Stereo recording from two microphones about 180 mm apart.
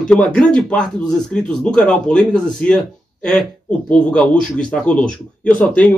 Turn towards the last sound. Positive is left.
turn(degrees=5)  # may be behind; listen again after turning